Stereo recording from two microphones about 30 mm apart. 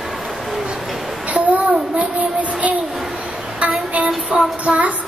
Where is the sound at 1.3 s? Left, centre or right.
Right.